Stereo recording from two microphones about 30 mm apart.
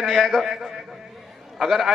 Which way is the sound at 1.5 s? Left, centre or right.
Centre.